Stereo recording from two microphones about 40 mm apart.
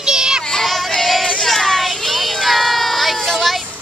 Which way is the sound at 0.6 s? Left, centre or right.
Centre.